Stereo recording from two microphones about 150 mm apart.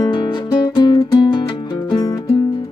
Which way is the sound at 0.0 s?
30° left (ahead or behind).